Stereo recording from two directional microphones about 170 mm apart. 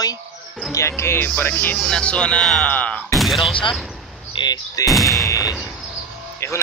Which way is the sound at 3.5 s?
30° left (ahead or behind).